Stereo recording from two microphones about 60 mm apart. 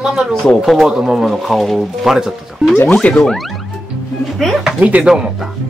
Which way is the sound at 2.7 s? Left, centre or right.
Left.